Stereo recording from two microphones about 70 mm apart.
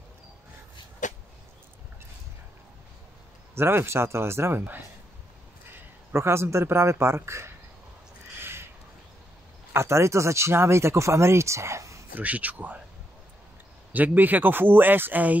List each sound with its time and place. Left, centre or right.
3.5 s a man's voice: right
8.4 s crow: right
9.7 s speech: right
12.2 s speech: right
13.9 s speech: right